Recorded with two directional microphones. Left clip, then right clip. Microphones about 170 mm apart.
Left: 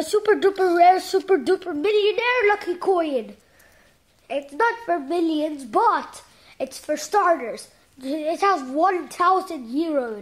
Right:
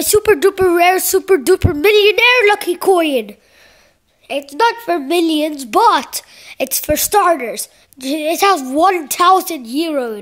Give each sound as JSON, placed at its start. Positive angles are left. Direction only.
{"t": 0.1, "sound": "a woman's voice", "side_deg": -40}
{"t": 4.3, "sound": "a woman's voice", "side_deg": -30}
{"t": 5.9, "sound": "a woman's voice", "side_deg": -50}
{"t": 9.7, "sound": "a woman's voice", "side_deg": -30}